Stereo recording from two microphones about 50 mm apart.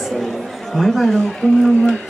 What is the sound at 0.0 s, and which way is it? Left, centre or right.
Chatter, centre.